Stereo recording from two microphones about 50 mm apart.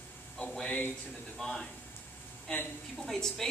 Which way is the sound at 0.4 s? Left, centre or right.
Centre.